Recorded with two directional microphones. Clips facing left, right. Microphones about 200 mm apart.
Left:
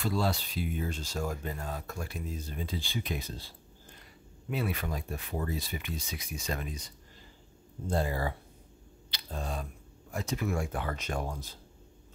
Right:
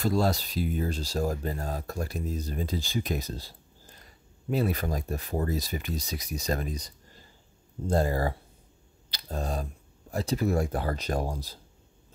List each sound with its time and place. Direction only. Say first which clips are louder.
0.0 s speech: right 5 dB; 40° right (ahead or behind)
7.9 s speech: right 5 dB; 40° right (ahead or behind)